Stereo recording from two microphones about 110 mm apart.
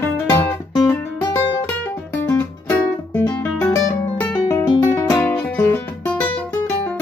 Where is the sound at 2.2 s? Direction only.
20° left (ahead or behind).